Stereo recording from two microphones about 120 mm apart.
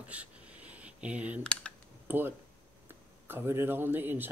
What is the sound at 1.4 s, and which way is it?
Computer keyboard, 10° left (ahead or behind).